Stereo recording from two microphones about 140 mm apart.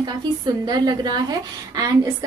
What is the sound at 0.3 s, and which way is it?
A woman's voice, 30° right (ahead or behind).